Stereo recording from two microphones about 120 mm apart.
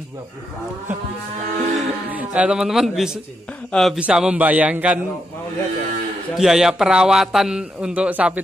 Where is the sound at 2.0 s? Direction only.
10° right (ahead or behind).